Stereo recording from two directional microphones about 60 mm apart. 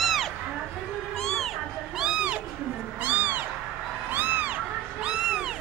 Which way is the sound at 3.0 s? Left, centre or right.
Right.